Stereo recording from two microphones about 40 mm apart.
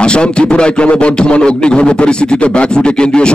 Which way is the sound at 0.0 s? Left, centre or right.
Left.